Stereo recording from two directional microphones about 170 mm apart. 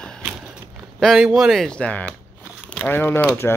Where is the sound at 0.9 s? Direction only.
5° right (ahead or behind).